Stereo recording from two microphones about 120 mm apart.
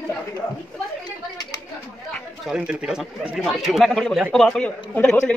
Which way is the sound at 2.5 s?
5° right (ahead or behind).